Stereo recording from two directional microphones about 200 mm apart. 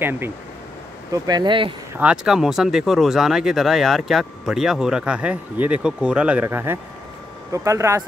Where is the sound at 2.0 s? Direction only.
5° right (ahead or behind).